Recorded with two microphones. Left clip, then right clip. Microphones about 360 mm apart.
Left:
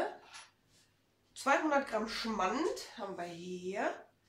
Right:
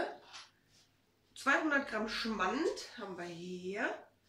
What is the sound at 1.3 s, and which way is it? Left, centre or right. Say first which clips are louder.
Speech: left 1 dB; centre.